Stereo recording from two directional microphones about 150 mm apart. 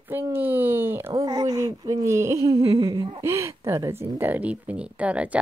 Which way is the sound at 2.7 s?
20° right (ahead or behind).